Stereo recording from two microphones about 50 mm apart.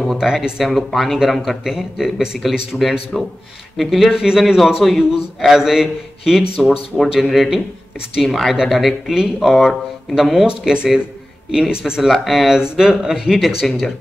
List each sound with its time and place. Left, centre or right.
0.2 s a man's voice: centre
0.7 s a man's voice: centre
1.6 s a man's voice: centre
3.1 s a man's voice: centre
10.4 s a man's voice: centre